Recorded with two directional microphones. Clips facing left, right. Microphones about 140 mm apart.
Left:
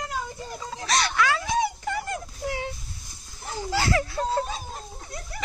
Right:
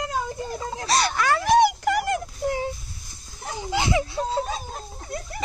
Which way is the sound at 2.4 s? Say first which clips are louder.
Right 5 dB; 40° right (ahead or behind).